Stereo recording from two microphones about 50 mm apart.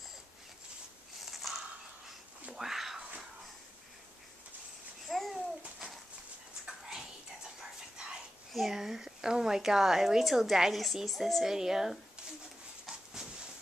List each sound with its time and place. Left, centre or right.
1.2 s a sound: centre
5.0 s babbling: centre
5.6 s a sound: centre
7.6 s whispering: centre
8.5 s speech: centre
12.8 s dog: centre